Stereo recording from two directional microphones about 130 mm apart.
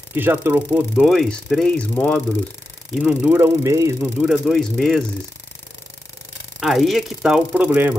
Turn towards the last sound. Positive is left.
turn(degrees=-10)  # may be behind; listen again after turning